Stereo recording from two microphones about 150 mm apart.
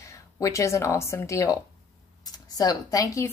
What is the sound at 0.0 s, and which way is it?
Speech, 20° left (ahead or behind).